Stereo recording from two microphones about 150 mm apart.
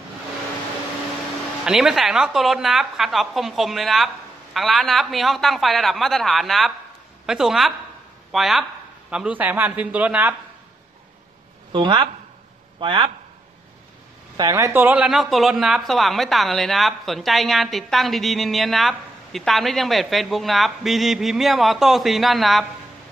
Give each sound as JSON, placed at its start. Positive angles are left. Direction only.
{"t": 1.7, "sound": "speech", "side_deg": 0}
{"t": 11.7, "sound": "speech", "side_deg": -30}
{"t": 14.3, "sound": "speech", "side_deg": -25}